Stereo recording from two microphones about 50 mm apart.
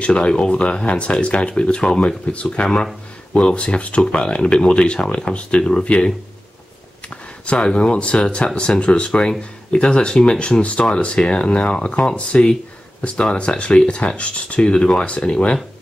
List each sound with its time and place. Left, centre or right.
0.0 s speech: left
7.1 s speech: left